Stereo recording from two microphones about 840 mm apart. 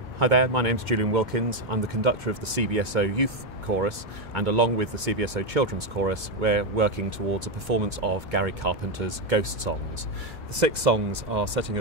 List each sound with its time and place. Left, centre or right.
0.2 s speech: right